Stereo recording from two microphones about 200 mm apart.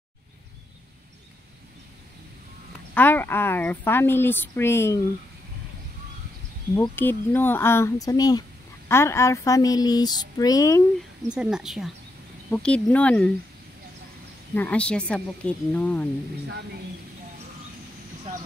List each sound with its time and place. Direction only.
2.9 s speech: 10° left (ahead or behind)
6.7 s speech: 10° left (ahead or behind)
11.3 s speech: 5° right (ahead or behind)
14.5 s speech: 10° left (ahead or behind)